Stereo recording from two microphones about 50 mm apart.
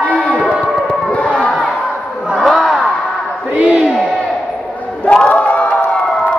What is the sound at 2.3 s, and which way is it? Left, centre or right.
Battle cry, centre.